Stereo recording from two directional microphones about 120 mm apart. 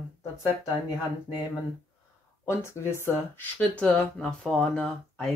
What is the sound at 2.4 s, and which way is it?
Speech, 20° left (ahead or behind).